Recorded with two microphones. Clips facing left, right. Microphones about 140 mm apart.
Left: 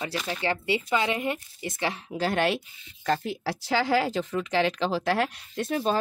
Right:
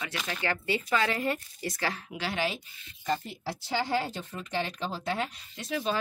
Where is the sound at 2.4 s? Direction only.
75° left (ahead or behind); by 6.0 s 45° left (ahead or behind).